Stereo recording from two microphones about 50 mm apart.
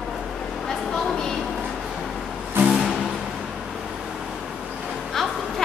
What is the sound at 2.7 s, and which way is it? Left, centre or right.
Music, centre.